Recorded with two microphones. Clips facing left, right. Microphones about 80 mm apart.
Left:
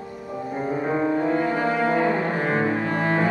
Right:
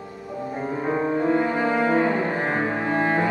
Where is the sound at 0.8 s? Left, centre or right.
Centre.